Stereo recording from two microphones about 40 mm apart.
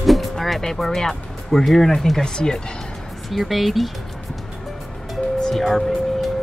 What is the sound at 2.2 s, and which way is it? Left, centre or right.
Speech, centre.